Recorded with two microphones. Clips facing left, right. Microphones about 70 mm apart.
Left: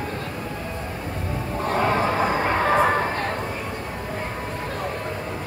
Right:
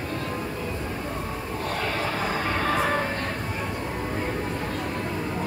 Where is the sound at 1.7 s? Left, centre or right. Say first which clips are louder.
Left 8 dB; left.